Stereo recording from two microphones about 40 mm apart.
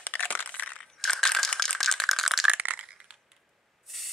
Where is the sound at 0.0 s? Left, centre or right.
Left.